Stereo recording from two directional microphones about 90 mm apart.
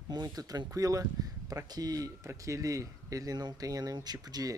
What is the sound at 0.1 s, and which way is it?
Speech, 45° right (ahead or behind).